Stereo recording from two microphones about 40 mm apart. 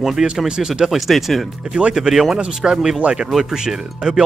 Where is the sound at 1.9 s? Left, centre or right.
Centre.